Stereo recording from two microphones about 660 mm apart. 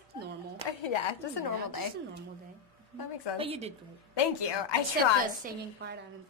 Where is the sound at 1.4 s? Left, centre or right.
Left.